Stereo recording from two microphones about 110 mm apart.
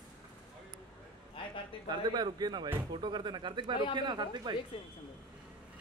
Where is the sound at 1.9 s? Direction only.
40° right (ahead or behind).